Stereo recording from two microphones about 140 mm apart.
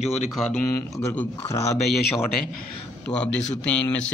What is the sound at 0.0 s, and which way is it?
Speech, 50° left (ahead or behind).